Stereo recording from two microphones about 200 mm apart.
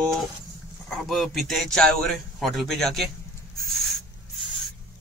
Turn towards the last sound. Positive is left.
turn(degrees=0)  # may be behind; listen again after turning